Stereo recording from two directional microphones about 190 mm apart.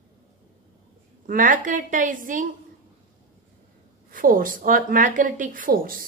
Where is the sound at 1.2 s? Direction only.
45° right (ahead or behind).